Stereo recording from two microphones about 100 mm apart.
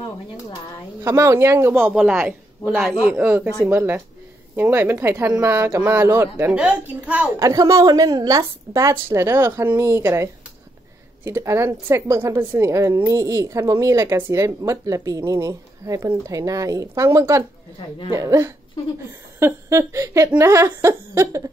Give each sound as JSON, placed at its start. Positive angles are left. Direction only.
{"t": 1.0, "sound": "laughter", "side_deg": -30}
{"t": 2.1, "sound": "a woman's voice", "side_deg": -20}
{"t": 3.6, "sound": "laughter", "side_deg": -20}
{"t": 6.5, "sound": "a woman's voice", "side_deg": -10}
{"t": 7.3, "sound": "speech", "side_deg": -35}
{"t": 11.2, "sound": "laughter", "side_deg": -25}
{"t": 13.0, "sound": "speech", "side_deg": -35}
{"t": 19.4, "sound": "laughter", "side_deg": -30}